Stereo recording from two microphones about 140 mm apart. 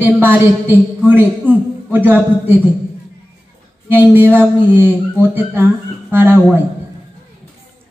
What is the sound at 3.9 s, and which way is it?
A man's voice, 15° right (ahead or behind).